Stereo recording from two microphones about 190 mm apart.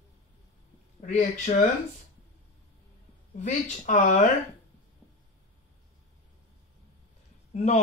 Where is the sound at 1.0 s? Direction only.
40° left (ahead or behind).